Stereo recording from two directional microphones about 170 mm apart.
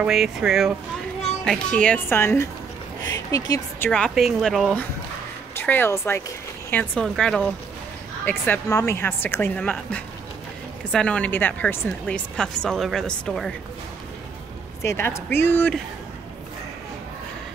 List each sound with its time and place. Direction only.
0.0 s a woman's voice: 5° right (ahead or behind); by 3.9 s 20° left (ahead or behind)
3.9 s a woman's voice: centre (ahead or behind)
14.8 s a woman's voice: 15° left (ahead or behind)